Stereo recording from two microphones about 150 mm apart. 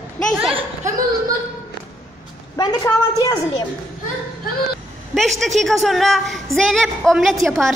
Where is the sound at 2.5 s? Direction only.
25° left (ahead or behind).